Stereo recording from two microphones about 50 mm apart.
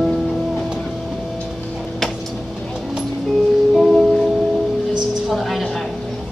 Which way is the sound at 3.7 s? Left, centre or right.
Centre.